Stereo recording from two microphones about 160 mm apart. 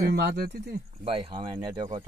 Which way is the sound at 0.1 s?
90° right.